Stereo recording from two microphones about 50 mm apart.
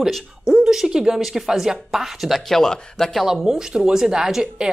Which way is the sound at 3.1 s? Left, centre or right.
Centre.